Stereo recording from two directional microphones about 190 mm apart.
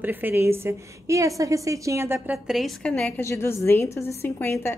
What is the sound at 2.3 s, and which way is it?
A woman's voice, centre (ahead or behind).